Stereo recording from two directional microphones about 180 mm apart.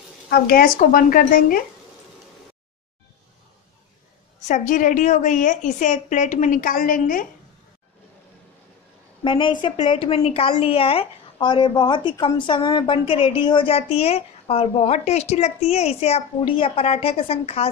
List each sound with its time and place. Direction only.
0.3 s a woman's voice: 55° left (ahead or behind)
4.5 s a woman's voice: 45° left (ahead or behind)
9.2 s a woman's voice: 25° left (ahead or behind)